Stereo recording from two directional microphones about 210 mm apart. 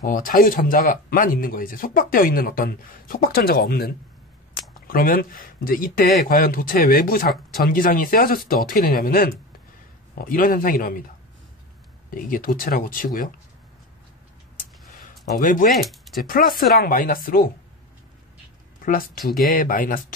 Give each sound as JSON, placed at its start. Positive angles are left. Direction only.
{"t": 0.0, "sound": "speech", "side_deg": 40}
{"t": 12.1, "sound": "speech", "side_deg": 40}
{"t": 15.3, "sound": "speech", "side_deg": 40}
{"t": 18.8, "sound": "speech", "side_deg": 40}